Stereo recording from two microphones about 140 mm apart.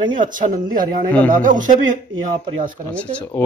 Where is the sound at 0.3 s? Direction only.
75° right (ahead or behind).